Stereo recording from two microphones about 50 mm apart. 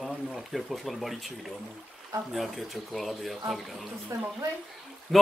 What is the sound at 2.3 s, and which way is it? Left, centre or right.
Speech, centre.